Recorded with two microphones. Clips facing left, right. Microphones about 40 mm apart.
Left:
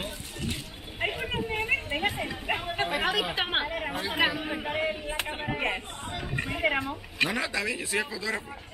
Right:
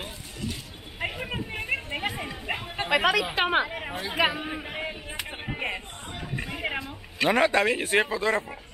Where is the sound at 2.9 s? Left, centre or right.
Right.